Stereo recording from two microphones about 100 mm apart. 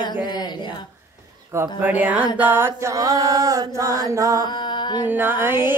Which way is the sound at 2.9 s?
35° right (ahead or behind).